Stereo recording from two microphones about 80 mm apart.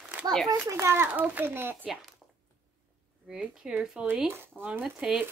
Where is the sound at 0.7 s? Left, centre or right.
Right.